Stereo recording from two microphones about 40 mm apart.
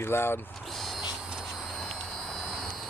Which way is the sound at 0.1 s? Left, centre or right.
Left.